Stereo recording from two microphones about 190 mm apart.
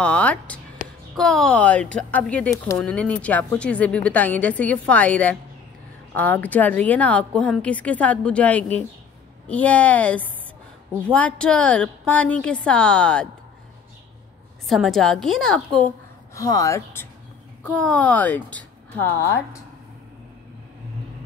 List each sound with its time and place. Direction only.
0.0 s a woman's voice: 5° left (ahead or behind)
14.7 s a woman's voice: centre (ahead or behind)
16.3 s speech: 15° left (ahead or behind)